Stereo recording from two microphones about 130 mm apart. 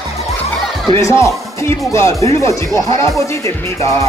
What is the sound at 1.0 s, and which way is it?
Speech, 25° left (ahead or behind).